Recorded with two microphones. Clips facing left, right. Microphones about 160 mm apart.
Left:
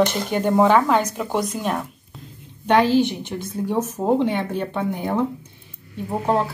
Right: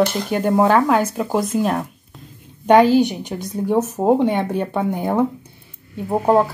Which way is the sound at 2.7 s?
15° right (ahead or behind).